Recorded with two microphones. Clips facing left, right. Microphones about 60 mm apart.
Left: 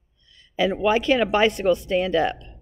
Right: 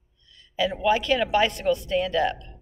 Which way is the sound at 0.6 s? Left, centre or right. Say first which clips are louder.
Left 2 dB; left.